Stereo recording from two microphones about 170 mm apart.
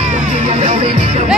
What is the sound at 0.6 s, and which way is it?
Music, 40° right (ahead or behind).